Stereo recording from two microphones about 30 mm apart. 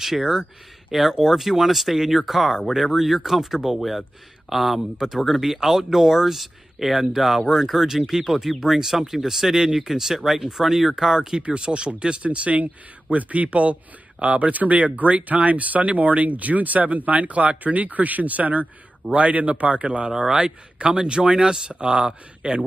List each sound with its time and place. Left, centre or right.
0.0 s speech: centre
0.9 s speech: centre
11.1 s speech: right
12.3 s a man's voice: right
14.5 s speech: right
19.1 s a man's voice: right
19.8 s speech: right
20.1 s speech: right
20.3 s speech: right